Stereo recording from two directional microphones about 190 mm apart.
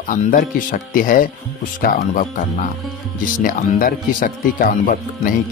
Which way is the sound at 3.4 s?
45° left (ahead or behind).